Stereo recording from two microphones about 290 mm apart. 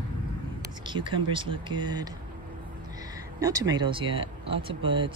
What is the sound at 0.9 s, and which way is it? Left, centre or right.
Speech, centre.